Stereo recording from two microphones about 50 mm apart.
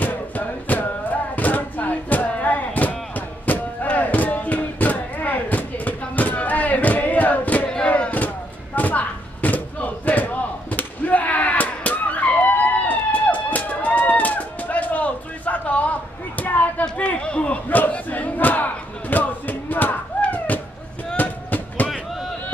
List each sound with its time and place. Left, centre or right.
0.0 s music: left
1.3 s a sound: left
8.7 s slam: left
16.9 s battle cry: left
20.2 s a sound: left
21.2 s music: left